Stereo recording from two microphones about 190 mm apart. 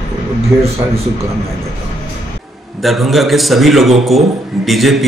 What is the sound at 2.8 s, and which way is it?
A man's voice, centre (ahead or behind).